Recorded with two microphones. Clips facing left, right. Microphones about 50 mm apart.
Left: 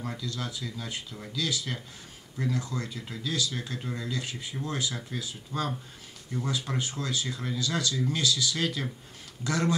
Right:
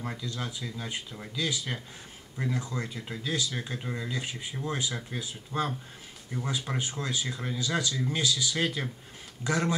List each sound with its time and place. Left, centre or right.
0.0 s speech: centre